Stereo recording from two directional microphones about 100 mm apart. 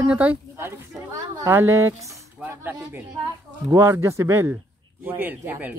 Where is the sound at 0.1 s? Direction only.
15° right (ahead or behind).